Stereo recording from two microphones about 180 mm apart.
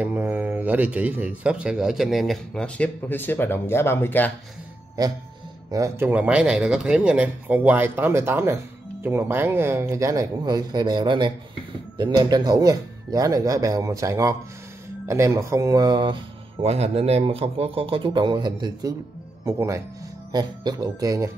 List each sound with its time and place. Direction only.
0.0 s speech: 10° right (ahead or behind); by 4.3 s 10° left (ahead or behind)
5.0 s a man's voice: 20° right (ahead or behind)
16.6 s a man's voice: 35° right (ahead or behind); by 21.3 s 20° right (ahead or behind)